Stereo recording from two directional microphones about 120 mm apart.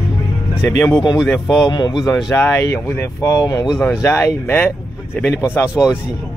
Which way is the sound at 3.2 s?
30° left (ahead or behind).